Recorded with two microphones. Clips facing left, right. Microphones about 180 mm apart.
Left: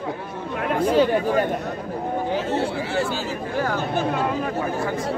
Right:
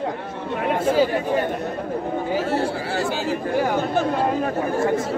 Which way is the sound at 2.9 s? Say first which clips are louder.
Right 1 dB; 50° right (ahead or behind).